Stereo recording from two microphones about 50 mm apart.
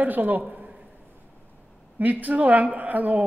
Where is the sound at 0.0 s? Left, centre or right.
Right.